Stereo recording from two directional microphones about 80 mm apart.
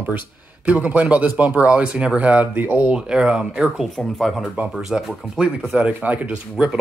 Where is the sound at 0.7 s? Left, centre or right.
Centre.